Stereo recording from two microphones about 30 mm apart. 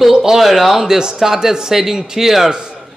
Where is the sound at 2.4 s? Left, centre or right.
Right.